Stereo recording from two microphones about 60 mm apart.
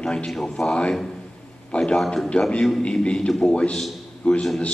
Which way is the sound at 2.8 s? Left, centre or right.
Centre.